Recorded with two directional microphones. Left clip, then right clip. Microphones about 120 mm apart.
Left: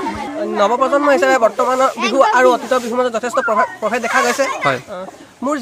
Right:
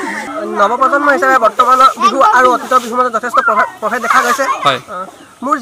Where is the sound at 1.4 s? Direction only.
15° left (ahead or behind).